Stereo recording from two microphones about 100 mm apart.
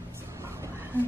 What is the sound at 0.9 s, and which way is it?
Speech, 20° right (ahead or behind).